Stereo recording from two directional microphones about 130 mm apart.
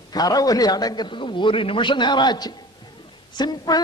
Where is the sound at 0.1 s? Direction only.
30° left (ahead or behind).